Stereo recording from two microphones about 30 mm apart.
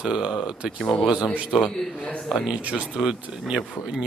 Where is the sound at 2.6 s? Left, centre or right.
Right.